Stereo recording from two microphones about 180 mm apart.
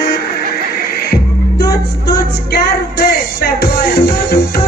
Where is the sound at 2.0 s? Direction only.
60° left (ahead or behind).